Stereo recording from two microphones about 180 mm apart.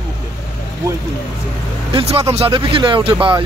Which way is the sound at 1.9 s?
30° right (ahead or behind).